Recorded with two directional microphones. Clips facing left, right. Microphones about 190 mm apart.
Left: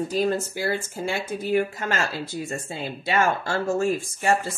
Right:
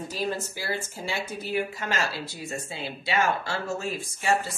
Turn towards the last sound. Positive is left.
turn(degrees=50)  # may be behind; listen again after turning